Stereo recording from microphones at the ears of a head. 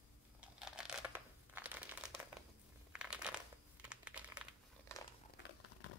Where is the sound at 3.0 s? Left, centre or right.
Centre.